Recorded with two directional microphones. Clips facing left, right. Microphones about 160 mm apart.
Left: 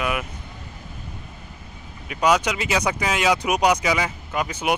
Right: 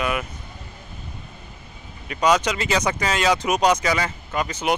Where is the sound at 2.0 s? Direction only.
5° left (ahead or behind).